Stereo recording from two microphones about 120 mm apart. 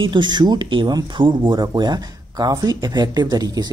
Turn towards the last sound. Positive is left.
turn(degrees=-35)  # may be behind; listen again after turning